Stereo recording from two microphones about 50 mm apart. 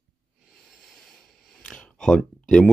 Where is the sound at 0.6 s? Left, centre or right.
Centre.